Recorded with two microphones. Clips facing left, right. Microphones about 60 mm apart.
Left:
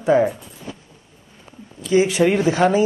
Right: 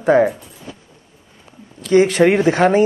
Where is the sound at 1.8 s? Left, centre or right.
Right.